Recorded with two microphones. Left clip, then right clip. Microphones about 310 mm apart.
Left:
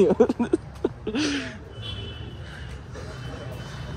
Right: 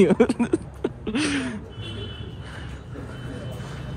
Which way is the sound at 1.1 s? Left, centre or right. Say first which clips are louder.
Right 4 dB; centre.